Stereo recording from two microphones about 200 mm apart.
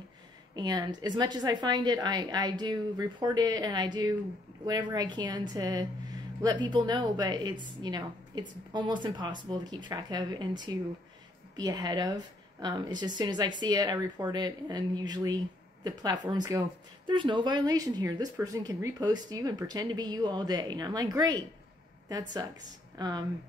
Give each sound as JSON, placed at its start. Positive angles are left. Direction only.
{"t": 0.6, "sound": "speech", "side_deg": -20}
{"t": 22.9, "sound": "speech", "side_deg": -20}